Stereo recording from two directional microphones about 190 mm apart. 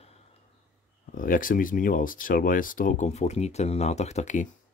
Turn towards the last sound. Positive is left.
turn(degrees=40)  # may be behind; listen again after turning